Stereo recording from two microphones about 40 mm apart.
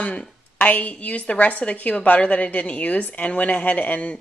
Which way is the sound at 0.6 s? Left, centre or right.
Left.